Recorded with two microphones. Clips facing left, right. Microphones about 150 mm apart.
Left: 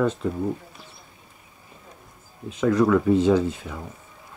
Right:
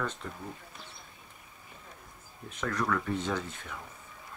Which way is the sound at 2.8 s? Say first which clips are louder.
Left 13 dB; 10° left (ahead or behind).